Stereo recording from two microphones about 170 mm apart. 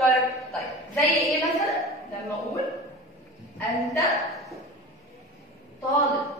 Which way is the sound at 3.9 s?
20° left (ahead or behind).